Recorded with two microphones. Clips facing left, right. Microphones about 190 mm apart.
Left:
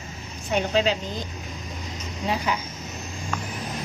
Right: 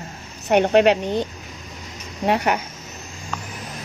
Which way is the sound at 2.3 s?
65° right (ahead or behind).